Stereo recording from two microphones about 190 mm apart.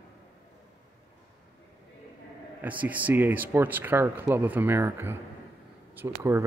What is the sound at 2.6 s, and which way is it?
Speech, 10° right (ahead or behind).